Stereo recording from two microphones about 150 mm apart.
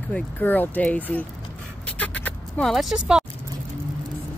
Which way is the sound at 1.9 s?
10° left (ahead or behind).